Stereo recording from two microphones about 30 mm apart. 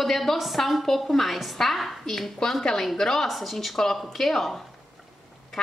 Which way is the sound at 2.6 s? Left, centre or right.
Left.